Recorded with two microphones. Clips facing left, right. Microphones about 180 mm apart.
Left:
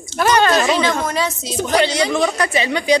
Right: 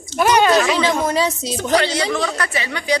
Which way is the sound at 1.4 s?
20° left (ahead or behind).